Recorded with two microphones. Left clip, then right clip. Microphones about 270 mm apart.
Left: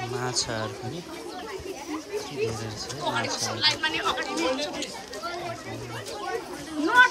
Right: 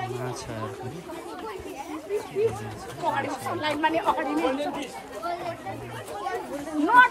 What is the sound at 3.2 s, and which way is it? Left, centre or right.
Speech, right.